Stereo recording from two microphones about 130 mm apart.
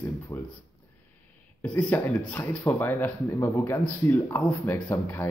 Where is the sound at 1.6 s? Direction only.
10° left (ahead or behind).